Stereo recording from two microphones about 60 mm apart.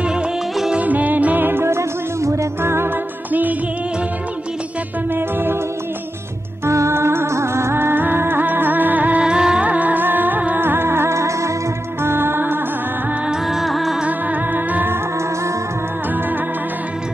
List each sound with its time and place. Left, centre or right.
0.7 s music: right
5.1 s music: right
6.6 s music: right
9.2 s music: centre
9.7 s music: right
12.0 s music: right
13.5 s music: centre
14.0 s music: right